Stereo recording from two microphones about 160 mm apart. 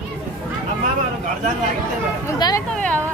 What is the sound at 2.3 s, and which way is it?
Speech, 25° left (ahead or behind).